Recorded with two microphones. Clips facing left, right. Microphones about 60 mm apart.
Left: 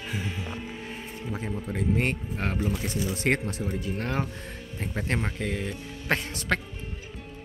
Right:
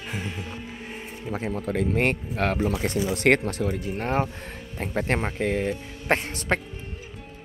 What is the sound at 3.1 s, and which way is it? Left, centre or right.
Speech, right.